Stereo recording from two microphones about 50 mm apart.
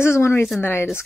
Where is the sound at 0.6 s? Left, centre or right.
Left.